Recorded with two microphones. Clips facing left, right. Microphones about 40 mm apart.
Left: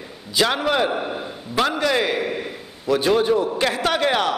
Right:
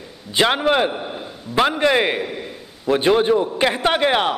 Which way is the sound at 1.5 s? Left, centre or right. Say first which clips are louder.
Right 3 dB; right.